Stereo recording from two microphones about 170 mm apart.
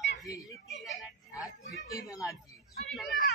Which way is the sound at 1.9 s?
20° left (ahead or behind).